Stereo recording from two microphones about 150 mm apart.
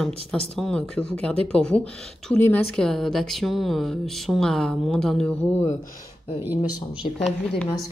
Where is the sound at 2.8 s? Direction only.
5° left (ahead or behind).